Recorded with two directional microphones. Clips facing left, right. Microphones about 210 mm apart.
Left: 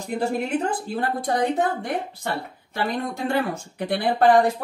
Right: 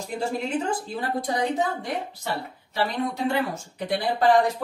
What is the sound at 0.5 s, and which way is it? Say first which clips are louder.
A woman's voice: left 2 dB; 55° left (ahead or behind).